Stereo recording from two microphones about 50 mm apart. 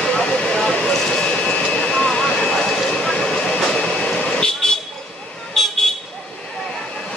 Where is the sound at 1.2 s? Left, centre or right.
Left.